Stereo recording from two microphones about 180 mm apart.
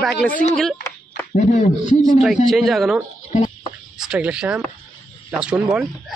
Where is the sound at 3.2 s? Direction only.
40° left (ahead or behind).